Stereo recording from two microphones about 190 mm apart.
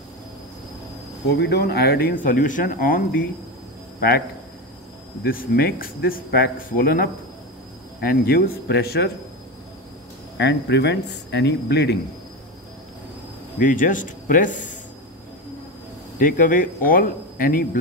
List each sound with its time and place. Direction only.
1.3 s speech: 60° left (ahead or behind)
5.2 s speech: 50° left (ahead or behind)
10.3 s speech: 65° left (ahead or behind)
13.6 s speech: 45° left (ahead or behind)
16.2 s speech: 45° left (ahead or behind)